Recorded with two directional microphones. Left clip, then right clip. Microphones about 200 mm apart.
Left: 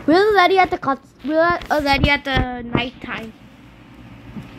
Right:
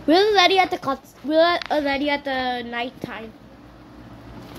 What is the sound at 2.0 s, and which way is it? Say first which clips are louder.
Speech: left 4 dB; 15° left (ahead or behind).